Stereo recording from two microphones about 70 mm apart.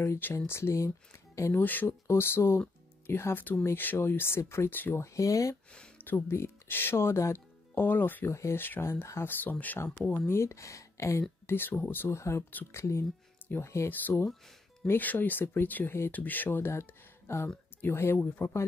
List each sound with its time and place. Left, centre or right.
0.5 s speech: left
1.5 s speech: left
2.0 s speech: left
5.0 s speech: left
5.9 s speech: left
8.3 s speech: left
10.1 s speech: left
12.2 s speech: left
13.8 s speech: left